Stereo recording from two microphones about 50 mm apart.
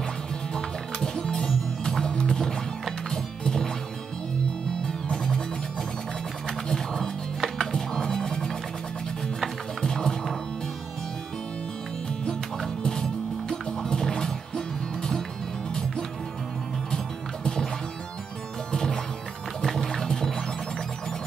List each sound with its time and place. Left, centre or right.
0.6 s music: centre
4.8 s music: centre
6.4 s a sound: centre
7.4 s music: centre
9.8 s music: centre
12.3 s music: centre
18.7 s music: centre